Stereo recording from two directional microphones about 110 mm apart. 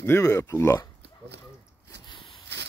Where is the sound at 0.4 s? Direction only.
25° left (ahead or behind).